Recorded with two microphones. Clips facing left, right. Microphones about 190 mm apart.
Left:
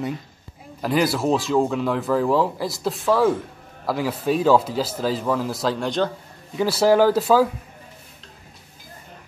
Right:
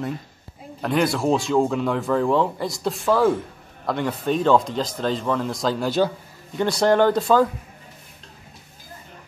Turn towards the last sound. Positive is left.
turn(degrees=5)  # may be behind; listen again after turning